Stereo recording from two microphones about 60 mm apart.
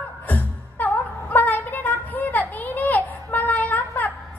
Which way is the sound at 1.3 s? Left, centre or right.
Left.